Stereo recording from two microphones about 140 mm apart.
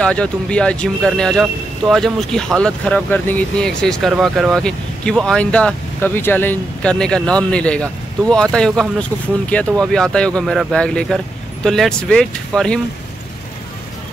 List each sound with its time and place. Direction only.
0.0 s speech: 5° left (ahead or behind)